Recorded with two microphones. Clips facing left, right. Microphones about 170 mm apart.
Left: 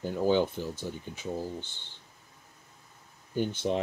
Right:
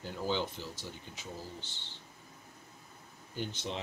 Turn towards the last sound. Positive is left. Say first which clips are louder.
# left 10 dB
turn(degrees=50)  # may be behind; listen again after turning